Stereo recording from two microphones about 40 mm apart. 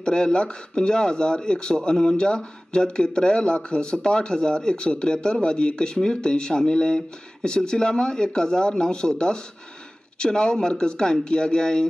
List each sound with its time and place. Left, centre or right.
0.0 s speech: left